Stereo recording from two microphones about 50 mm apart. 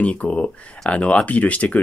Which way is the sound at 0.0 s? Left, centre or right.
Left.